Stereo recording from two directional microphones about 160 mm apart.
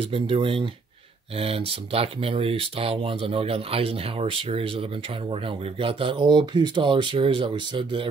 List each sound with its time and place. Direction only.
0.0 s speech: 35° right (ahead or behind)